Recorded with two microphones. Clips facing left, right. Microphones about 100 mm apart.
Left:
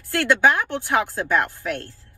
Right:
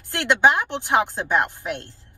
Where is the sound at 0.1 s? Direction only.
20° right (ahead or behind).